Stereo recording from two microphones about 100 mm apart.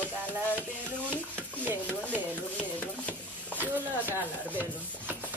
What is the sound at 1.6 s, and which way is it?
Speech, 20° right (ahead or behind).